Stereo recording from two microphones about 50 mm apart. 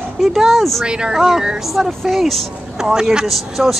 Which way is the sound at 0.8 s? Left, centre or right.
Centre.